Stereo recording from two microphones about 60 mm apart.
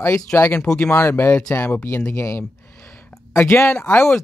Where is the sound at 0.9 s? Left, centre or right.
Left.